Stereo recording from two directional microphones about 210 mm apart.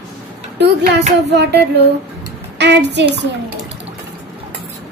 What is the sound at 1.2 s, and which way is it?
A woman's voice, 55° right (ahead or behind).